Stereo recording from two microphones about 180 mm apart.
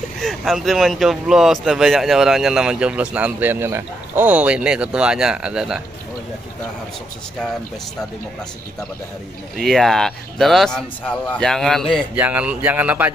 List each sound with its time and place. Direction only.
0.2 s speech: centre (ahead or behind)
9.6 s speech: centre (ahead or behind)
12.2 s speech: 10° right (ahead or behind)